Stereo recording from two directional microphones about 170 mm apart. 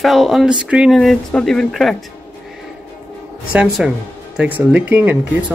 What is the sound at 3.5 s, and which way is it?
Speech, 5° right (ahead or behind).